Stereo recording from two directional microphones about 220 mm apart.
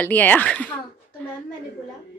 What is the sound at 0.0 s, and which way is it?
Speech, 10° left (ahead or behind).